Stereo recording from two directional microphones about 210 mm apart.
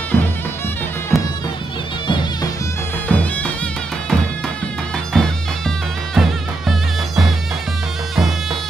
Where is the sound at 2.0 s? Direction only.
20° left (ahead or behind).